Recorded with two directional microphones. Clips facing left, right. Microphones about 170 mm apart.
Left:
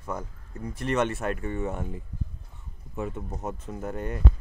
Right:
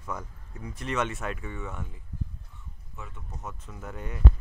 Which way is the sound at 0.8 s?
55° left (ahead or behind).